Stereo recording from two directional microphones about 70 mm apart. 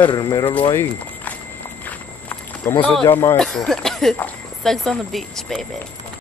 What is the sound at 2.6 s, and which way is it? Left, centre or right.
Speech, left.